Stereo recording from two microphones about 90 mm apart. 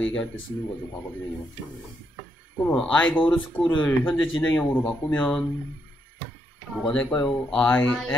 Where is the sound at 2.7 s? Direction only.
10° left (ahead or behind).